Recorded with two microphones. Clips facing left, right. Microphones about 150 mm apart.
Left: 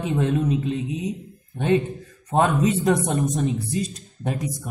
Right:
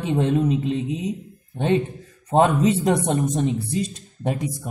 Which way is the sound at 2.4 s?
25° right (ahead or behind).